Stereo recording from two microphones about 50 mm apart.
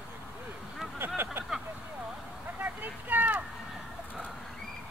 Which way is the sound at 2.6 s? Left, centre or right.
Right.